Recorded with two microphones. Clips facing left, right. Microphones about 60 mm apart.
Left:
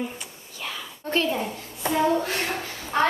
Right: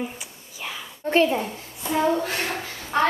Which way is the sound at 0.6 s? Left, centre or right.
Centre.